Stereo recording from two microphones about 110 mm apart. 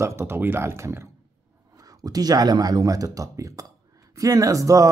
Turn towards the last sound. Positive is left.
turn(degrees=-30)  # may be behind; listen again after turning